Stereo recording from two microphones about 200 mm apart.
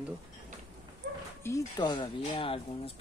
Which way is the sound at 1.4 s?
20° left (ahead or behind).